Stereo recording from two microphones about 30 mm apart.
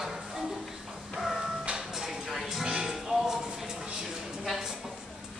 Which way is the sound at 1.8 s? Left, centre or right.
Centre.